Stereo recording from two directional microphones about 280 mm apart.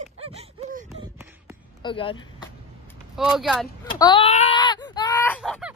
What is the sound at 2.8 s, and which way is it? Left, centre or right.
Vehicle, centre.